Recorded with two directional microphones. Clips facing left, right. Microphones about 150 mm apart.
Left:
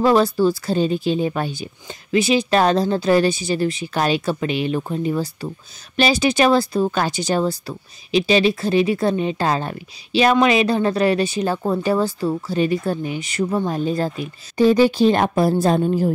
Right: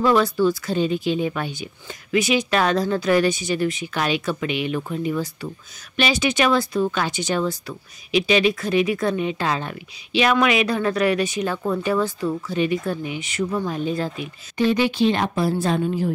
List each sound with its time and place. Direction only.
0.0 s speech: 35° left (ahead or behind)